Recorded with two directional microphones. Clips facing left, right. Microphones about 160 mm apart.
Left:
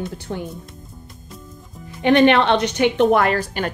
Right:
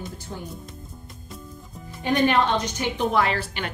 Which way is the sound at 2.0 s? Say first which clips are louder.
Left 7 dB; 75° left (ahead or behind).